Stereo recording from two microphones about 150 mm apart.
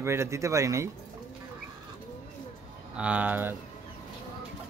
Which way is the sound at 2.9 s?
10° right (ahead or behind).